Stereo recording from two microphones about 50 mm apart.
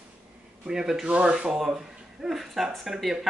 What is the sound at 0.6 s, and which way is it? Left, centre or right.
Speech, centre.